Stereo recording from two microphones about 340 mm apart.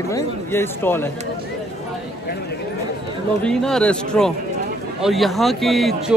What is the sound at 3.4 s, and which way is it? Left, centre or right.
A man's voice, centre.